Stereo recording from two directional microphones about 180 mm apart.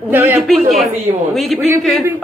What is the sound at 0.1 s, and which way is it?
Speech, 10° right (ahead or behind).